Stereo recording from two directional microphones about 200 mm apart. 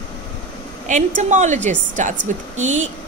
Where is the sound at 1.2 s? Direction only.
35° right (ahead or behind).